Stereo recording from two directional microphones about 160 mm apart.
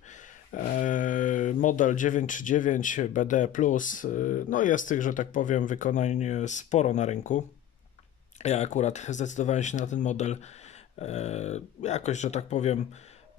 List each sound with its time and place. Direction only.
0.1 s speech: 60° left (ahead or behind); by 12.8 s 45° left (ahead or behind)